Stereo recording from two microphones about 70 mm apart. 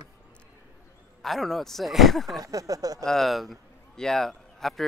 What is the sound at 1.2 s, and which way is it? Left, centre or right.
Speech, centre.